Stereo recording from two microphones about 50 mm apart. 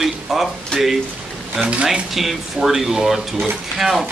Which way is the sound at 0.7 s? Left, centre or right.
Centre.